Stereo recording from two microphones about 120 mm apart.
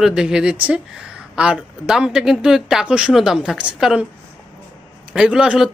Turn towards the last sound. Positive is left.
turn(degrees=-5)  # may be behind; listen again after turning